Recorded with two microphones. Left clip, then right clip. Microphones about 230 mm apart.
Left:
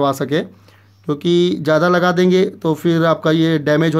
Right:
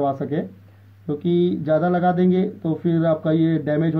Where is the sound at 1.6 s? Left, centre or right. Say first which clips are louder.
Left 5 dB; left.